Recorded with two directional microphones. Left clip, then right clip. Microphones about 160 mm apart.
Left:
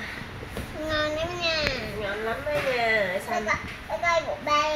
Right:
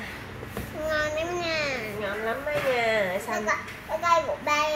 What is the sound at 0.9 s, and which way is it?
Child singing, 40° right (ahead or behind).